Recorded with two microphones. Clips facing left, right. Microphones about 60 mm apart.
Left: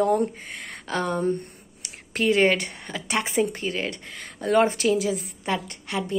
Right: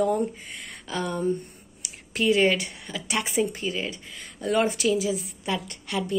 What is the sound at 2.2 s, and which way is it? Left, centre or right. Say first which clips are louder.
Speech: left 1 dB; left.